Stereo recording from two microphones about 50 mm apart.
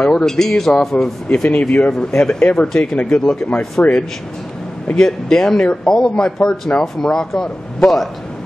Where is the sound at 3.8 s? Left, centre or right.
Left.